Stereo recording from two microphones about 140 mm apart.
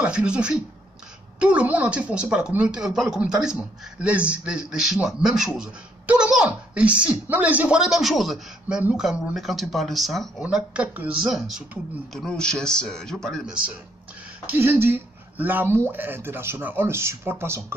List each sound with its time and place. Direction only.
0.0 s speech: 5° right (ahead or behind)
14.4 s speech: 15° right (ahead or behind)